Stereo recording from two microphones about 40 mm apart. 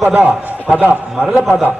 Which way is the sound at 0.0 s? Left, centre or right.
Right.